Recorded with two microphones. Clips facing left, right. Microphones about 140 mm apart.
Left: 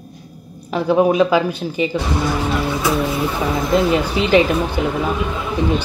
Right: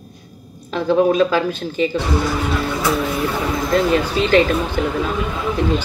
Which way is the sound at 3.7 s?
15° left (ahead or behind).